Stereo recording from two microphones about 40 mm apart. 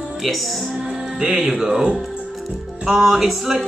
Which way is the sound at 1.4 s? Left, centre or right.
Centre.